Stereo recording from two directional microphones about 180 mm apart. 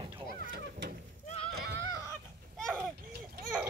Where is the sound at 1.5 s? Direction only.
65° right (ahead or behind).